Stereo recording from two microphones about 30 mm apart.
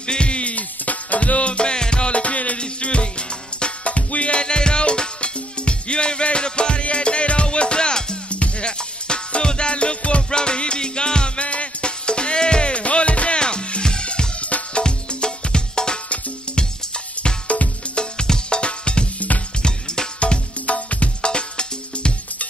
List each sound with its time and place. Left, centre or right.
0.0 s music: left
2.6 s music: left
3.8 s music: left
4.4 s music: left
13.4 s music: left
14.4 s music: left
14.8 s music: left
19.1 s music: left
20.2 s music: left
21.3 s music: left